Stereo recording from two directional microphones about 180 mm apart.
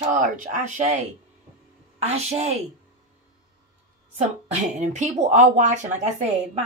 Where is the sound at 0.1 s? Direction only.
45° right (ahead or behind).